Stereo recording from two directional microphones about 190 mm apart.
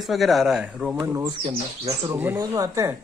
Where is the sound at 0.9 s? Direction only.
20° right (ahead or behind).